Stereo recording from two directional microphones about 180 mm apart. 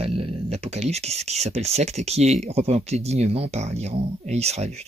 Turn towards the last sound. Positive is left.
turn(degrees=-35)  # may be behind; listen again after turning